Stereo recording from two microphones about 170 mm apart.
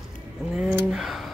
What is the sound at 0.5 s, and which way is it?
Speech, 5° right (ahead or behind).